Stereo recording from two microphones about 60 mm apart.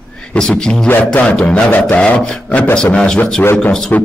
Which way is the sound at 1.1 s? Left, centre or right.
Left.